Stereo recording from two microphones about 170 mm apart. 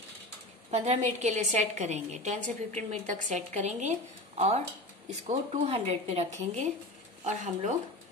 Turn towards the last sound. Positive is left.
turn(degrees=-45)  # may be behind; listen again after turning